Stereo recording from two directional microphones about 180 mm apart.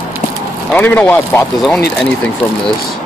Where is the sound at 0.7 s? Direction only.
10° left (ahead or behind).